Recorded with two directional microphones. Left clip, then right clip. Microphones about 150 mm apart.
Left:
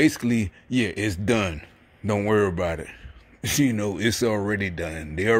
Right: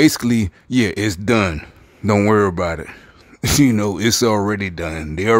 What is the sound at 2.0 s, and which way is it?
Speech, 60° right (ahead or behind).